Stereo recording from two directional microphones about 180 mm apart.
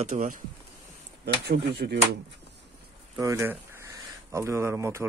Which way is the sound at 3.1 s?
15° right (ahead or behind).